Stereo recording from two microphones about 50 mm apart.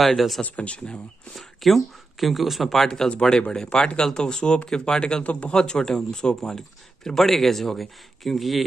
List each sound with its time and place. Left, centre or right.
0.0 s speech: centre
0.4 s speech: left
1.3 s speech: centre
5.2 s speech: left; by 8.6 s centre